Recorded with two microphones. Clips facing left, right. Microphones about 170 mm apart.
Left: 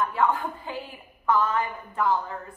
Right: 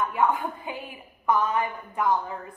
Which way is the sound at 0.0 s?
15° right (ahead or behind).